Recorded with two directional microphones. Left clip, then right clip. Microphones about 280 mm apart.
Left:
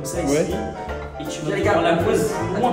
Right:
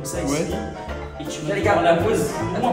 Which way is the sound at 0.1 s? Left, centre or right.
Centre.